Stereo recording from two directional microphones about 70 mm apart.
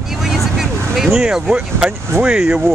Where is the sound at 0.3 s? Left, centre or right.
Centre.